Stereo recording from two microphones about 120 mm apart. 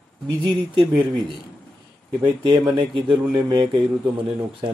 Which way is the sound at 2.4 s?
35° right (ahead or behind).